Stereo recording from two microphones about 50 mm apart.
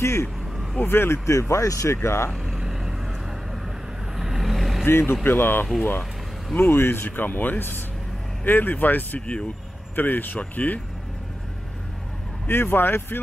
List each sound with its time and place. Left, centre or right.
0.0 s speech: left
0.7 s speech: left
1.5 s speech: left
2.0 s speech: left
2.4 s vehicle: centre
4.2 s vehicle: centre
4.8 s speech: left
12.4 s speech: left